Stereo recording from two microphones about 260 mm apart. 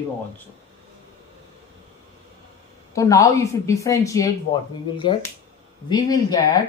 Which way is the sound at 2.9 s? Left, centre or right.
Centre.